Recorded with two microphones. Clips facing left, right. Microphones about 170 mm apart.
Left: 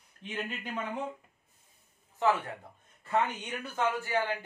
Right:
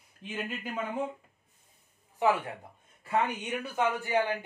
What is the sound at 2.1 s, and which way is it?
Speech, 10° right (ahead or behind).